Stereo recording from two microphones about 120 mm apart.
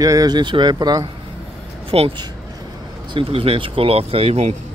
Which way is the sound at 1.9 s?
50° right (ahead or behind).